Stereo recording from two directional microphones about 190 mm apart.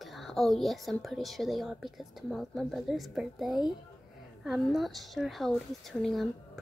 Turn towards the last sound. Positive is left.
turn(degrees=0)  # may be behind; listen again after turning